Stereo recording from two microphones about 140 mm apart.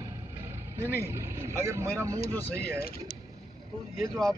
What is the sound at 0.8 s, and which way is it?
Speech, 15° left (ahead or behind).